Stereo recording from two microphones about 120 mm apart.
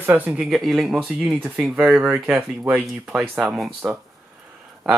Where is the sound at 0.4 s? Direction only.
Centre (ahead or behind).